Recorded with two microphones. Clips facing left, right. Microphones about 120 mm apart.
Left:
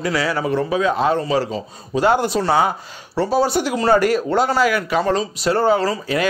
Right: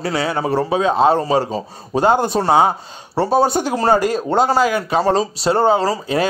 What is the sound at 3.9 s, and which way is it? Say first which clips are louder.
Speech: left 2 dB; 20° right (ahead or behind).